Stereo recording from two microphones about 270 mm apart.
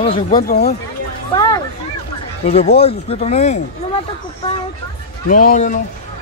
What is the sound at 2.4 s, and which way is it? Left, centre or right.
Speech, left.